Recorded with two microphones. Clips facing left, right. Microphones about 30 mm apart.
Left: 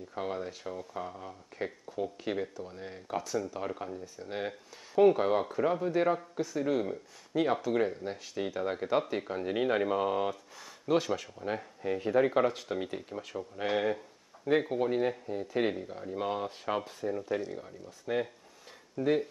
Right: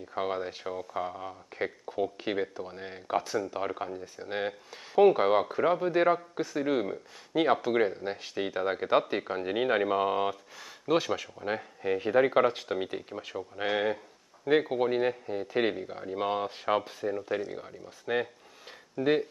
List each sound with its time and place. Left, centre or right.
0.1 s speech: right
11.4 s speech: right